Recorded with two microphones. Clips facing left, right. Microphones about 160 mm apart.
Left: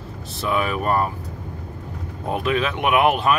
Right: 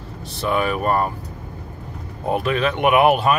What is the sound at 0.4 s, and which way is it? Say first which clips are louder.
Speech: right 2 dB; centre (ahead or behind).